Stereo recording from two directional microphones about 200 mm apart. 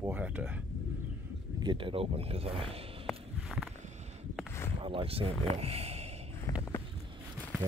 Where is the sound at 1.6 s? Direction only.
25° right (ahead or behind).